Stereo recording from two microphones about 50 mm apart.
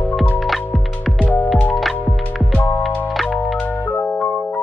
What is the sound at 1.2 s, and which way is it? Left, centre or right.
Music, left.